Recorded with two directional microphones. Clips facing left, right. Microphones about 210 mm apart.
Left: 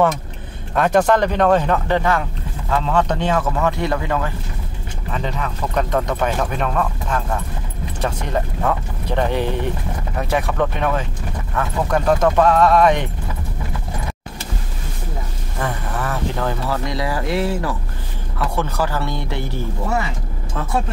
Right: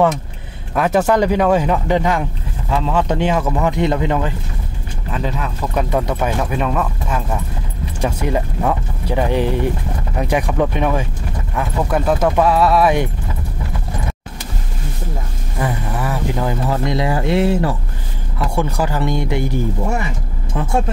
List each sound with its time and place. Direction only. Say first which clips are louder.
0.7 s speech: right 1 dB; 5° right (ahead or behind)
5.1 s speech: right 2 dB; 5° right (ahead or behind)
15.6 s speech: right 3 dB; 10° right (ahead or behind)
16.7 s speech: right 4 dB; 25° right (ahead or behind)
18.4 s speech: right 2 dB; 15° right (ahead or behind)
20.5 s speech: right 4 dB; 15° right (ahead or behind)